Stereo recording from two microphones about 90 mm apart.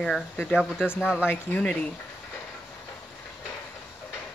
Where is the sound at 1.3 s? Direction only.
15° left (ahead or behind).